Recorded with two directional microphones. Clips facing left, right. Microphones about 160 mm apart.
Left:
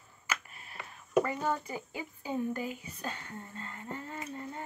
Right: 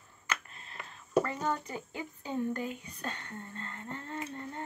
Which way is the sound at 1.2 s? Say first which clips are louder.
Left 1 dB; 10° left (ahead or behind).